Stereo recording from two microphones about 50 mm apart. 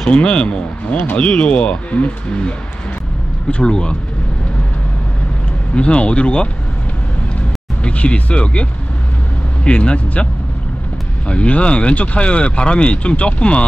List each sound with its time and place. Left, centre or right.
0.0 s speech: left
5.8 s speech: left
7.8 s speech: left
9.7 s speech: left
11.2 s speech: left